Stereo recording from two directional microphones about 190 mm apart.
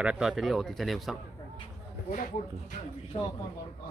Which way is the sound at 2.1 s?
45° left (ahead or behind).